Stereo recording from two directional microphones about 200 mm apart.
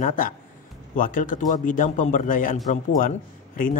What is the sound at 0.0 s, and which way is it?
A man's voice, 40° left (ahead or behind).